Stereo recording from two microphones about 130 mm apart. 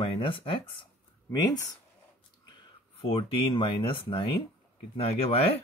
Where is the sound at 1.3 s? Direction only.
30° left (ahead or behind).